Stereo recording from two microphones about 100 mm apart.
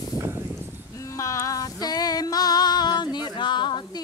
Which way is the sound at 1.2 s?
30° left (ahead or behind).